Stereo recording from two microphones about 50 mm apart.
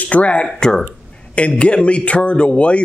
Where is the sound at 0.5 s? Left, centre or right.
Centre.